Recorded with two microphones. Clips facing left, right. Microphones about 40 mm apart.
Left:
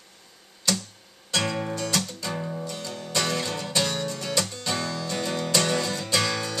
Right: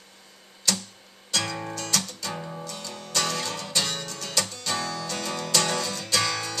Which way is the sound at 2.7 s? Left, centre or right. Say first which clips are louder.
Left 3 dB; centre.